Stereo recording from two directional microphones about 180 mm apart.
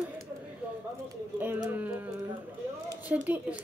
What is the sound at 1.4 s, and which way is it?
A woman's voice, 10° right (ahead or behind).